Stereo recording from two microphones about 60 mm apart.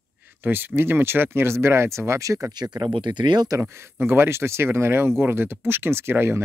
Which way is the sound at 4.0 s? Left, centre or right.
Right.